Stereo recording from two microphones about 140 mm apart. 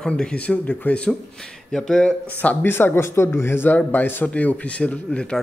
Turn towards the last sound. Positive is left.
turn(degrees=5)  # may be behind; listen again after turning